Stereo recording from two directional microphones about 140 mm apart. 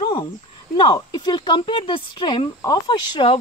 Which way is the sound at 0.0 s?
35° left (ahead or behind).